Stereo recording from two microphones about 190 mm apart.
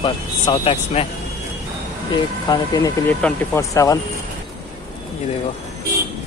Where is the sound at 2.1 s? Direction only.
20° left (ahead or behind).